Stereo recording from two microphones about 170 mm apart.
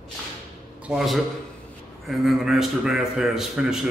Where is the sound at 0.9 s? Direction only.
Centre (ahead or behind).